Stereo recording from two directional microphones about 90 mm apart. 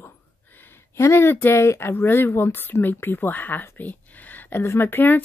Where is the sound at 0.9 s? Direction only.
30° left (ahead or behind).